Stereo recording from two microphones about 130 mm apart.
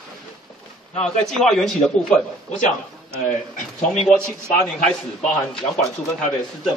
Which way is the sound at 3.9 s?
5° left (ahead or behind).